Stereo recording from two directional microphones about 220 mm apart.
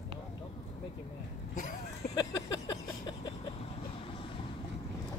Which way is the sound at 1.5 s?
40° left (ahead or behind).